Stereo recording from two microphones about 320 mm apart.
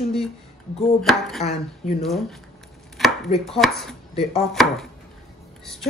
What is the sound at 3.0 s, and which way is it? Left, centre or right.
Chopping, centre.